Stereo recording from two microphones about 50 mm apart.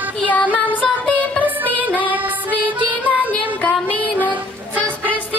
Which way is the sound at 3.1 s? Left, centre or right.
Left.